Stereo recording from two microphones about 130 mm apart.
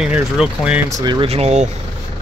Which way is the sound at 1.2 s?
55° right (ahead or behind).